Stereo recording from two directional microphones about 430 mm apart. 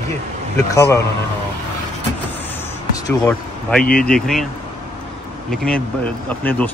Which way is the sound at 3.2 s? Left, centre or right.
Centre.